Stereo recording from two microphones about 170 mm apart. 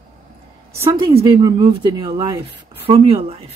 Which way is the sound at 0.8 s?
20° right (ahead or behind).